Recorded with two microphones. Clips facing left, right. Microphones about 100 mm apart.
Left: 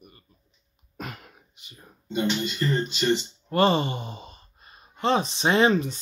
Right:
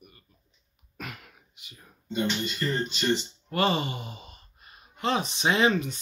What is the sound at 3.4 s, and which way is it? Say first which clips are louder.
Sigh: left 5 dB; 35° left (ahead or behind).